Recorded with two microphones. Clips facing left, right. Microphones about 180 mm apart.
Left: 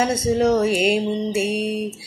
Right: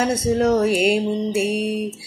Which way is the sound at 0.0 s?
5° right (ahead or behind).